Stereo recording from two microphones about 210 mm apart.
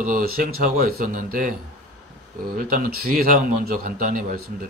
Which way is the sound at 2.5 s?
40° right (ahead or behind).